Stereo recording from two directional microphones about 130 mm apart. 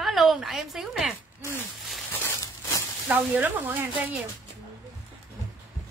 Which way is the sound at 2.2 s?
25° left (ahead or behind).